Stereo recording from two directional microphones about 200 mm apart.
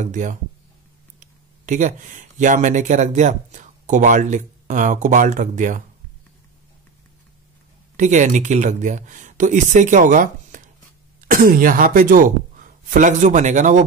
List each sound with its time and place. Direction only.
0.0 s speech: 40° right (ahead or behind)
8.0 s speech: 40° right (ahead or behind)